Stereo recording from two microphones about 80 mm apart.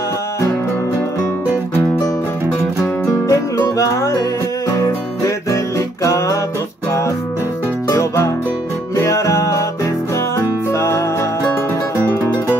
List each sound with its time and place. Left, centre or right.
3.3 s music: left
5.2 s music: left
7.9 s music: left
10.7 s music: left